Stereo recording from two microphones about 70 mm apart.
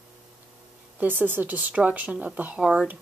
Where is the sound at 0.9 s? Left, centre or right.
Right.